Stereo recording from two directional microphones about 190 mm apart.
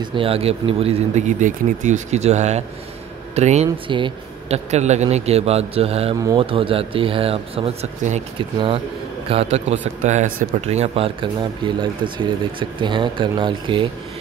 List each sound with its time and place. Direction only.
0.0 s speech: 25° right (ahead or behind)
3.6 s speech: 25° right (ahead or behind)
6.1 s speech: 15° right (ahead or behind)
6.4 s speech: 30° right (ahead or behind)